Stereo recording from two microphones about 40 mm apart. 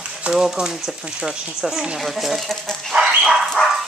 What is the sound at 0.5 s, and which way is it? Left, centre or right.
Speech, centre.